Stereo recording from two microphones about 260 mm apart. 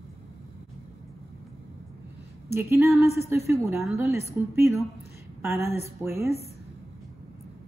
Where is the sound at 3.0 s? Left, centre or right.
Left.